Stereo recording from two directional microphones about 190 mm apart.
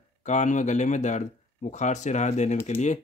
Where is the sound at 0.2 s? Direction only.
40° left (ahead or behind).